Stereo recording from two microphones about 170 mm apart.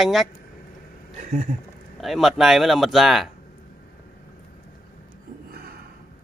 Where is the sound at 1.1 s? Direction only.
50° right (ahead or behind).